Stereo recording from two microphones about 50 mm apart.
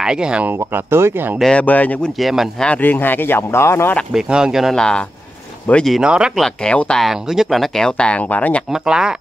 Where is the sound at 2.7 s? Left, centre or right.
Left.